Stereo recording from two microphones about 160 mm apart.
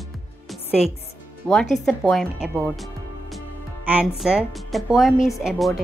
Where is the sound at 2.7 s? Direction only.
Centre (ahead or behind).